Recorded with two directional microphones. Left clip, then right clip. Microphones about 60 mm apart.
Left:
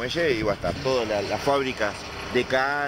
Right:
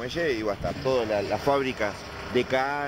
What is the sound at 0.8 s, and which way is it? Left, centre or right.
Speech, right.